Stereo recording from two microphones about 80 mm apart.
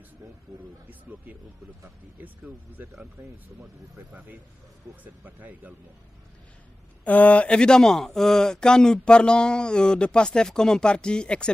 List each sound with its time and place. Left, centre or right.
2.8 s speech: right
5.0 s speech: centre
7.1 s speech: centre